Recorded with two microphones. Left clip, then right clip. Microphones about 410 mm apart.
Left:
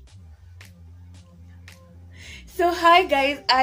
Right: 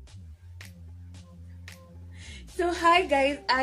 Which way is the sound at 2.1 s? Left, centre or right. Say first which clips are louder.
Left 5 dB; right.